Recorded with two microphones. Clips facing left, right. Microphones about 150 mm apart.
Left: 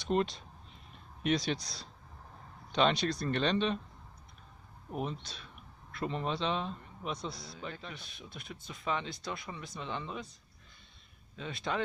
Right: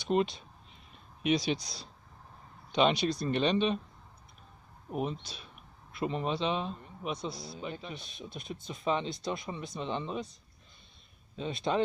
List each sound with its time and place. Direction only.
0.0 s speech: 5° right (ahead or behind)
5.2 s speech: 15° right (ahead or behind)
7.3 s speech: 30° right (ahead or behind)
11.3 s speech: 20° right (ahead or behind)